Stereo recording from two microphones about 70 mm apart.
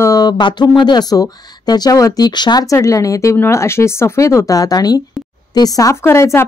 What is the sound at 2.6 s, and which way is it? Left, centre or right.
Speech, left.